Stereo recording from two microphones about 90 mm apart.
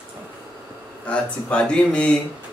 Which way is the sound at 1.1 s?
10° left (ahead or behind).